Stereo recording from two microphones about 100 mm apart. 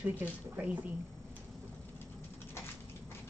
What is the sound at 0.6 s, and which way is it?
Speech, 15° right (ahead or behind).